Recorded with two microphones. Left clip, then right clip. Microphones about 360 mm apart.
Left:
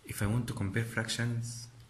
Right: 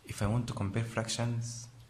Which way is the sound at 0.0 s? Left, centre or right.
Centre.